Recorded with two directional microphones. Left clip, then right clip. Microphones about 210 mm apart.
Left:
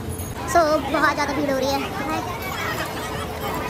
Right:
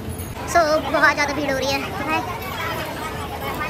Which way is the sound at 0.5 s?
15° left (ahead or behind).